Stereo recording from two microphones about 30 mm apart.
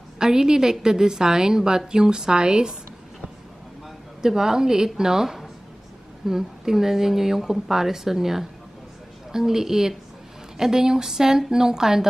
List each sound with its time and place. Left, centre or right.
0.2 s a woman's voice: right
4.2 s a woman's voice: centre